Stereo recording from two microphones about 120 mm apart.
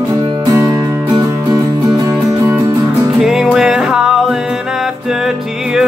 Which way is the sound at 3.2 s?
5° right (ahead or behind).